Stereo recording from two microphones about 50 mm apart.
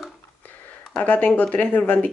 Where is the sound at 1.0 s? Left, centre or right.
Left.